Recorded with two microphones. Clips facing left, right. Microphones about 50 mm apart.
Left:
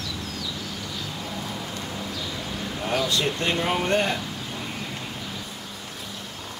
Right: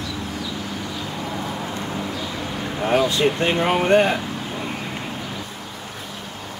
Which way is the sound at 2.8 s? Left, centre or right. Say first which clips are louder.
Right 7 dB; right.